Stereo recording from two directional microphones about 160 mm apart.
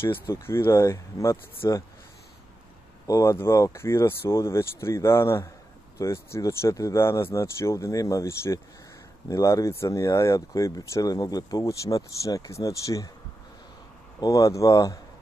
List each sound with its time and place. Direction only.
0.0 s speech: 15° left (ahead or behind)
3.1 s speech: 20° left (ahead or behind)
14.2 s speech: 20° left (ahead or behind)